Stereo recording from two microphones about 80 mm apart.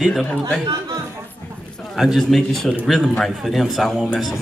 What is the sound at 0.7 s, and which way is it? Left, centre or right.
Speech, right.